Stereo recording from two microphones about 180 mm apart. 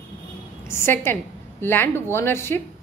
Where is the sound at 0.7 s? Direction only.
15° left (ahead or behind).